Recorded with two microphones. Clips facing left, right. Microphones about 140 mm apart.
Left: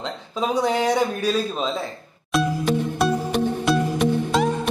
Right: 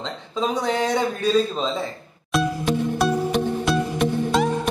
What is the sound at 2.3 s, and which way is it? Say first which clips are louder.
Music: left 1 dB; centre (ahead or behind).